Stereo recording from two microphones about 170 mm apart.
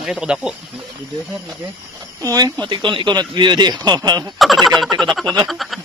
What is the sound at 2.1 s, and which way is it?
Speech, 20° right (ahead or behind).